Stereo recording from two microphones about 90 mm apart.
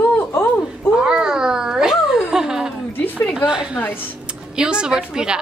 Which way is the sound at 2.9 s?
20° left (ahead or behind).